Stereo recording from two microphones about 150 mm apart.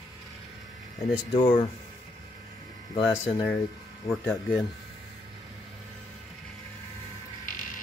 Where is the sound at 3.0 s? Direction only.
5° right (ahead or behind).